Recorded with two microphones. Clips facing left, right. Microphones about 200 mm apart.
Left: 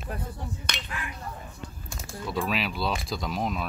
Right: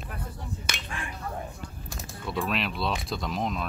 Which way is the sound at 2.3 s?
Centre (ahead or behind).